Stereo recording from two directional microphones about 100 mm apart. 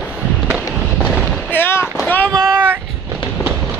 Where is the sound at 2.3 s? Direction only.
40° right (ahead or behind).